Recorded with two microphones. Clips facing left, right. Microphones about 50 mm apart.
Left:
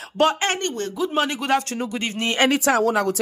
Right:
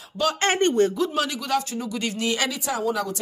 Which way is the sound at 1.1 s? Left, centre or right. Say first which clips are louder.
Left 3 dB; left.